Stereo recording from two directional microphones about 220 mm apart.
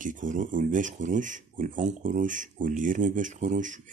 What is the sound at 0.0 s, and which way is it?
Speech, 35° right (ahead or behind).